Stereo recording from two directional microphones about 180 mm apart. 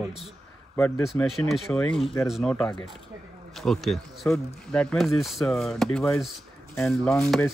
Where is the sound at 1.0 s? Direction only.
Centre (ahead or behind).